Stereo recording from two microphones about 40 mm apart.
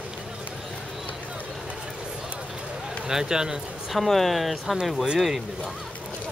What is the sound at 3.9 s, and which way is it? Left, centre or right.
Speech, centre.